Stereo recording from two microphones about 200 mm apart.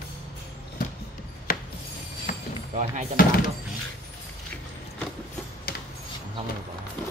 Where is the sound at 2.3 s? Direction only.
40° left (ahead or behind).